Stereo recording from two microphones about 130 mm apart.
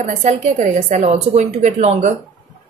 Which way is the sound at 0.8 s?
70° right (ahead or behind).